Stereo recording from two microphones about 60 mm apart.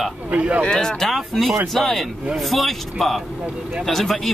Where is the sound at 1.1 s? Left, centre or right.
Centre.